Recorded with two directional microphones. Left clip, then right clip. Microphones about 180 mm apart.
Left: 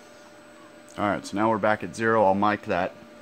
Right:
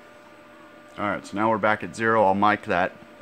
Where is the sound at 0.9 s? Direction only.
45° left (ahead or behind).